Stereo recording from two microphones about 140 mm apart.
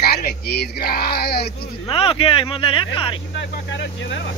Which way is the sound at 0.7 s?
90° left.